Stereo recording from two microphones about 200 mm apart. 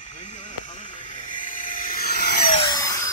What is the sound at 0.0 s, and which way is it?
Vehicle, 35° left (ahead or behind).